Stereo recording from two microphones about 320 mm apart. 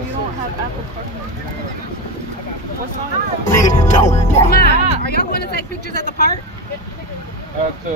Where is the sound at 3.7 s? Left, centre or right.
Left.